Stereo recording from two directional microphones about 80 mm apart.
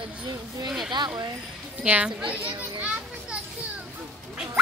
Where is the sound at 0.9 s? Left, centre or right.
Right.